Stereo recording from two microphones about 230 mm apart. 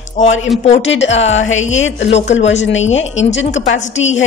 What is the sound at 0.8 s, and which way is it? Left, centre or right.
A woman's voice, left.